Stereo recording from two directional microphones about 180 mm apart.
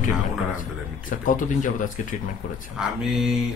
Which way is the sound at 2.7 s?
5° right (ahead or behind).